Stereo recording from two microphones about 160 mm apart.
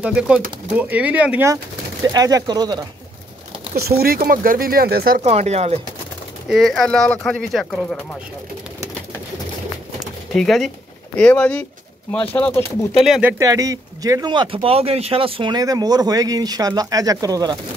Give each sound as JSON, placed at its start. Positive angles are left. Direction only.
{"t": 0.0, "sound": "speech", "side_deg": -5}
{"t": 2.1, "sound": "speech", "side_deg": -25}
{"t": 3.7, "sound": "speech", "side_deg": -75}
{"t": 5.2, "sound": "speech", "side_deg": -45}
{"t": 6.5, "sound": "speech", "side_deg": 0}
{"t": 9.9, "sound": "pigeon", "side_deg": 0}
{"t": 11.1, "sound": "speech", "side_deg": 5}
{"t": 13.0, "sound": "speech", "side_deg": -5}
{"t": 13.4, "sound": "speech", "side_deg": -20}